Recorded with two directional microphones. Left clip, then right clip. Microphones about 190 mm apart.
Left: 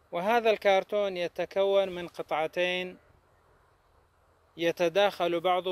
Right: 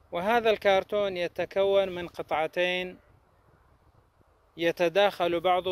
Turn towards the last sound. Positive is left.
turn(degrees=-15)  # may be behind; listen again after turning